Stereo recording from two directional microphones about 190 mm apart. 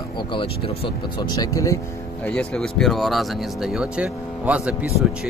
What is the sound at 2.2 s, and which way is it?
Speech, 5° left (ahead or behind).